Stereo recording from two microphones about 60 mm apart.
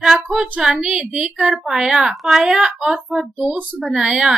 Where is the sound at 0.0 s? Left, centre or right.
Centre.